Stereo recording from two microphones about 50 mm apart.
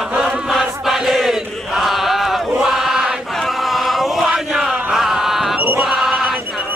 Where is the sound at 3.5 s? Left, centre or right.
Centre.